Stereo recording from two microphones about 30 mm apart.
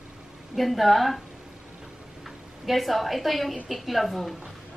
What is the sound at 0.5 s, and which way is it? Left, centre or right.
Speech, centre.